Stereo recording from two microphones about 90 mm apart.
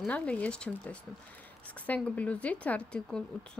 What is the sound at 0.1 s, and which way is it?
A woman's voice, 15° left (ahead or behind).